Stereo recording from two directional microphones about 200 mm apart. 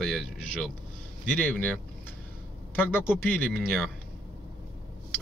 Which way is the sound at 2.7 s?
10° left (ahead or behind).